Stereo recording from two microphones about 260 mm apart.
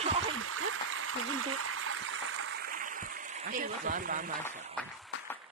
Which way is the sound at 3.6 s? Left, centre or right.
Right.